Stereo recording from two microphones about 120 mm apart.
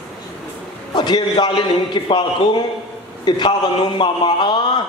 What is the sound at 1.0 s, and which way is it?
A man's voice, 35° left (ahead or behind).